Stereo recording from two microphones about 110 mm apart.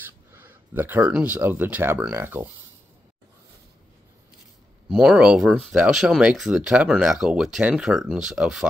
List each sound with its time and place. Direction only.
0.0 s a sound: 20° right (ahead or behind)
1.1 s speech: 15° right (ahead or behind)
4.8 s speech: 5° right (ahead or behind)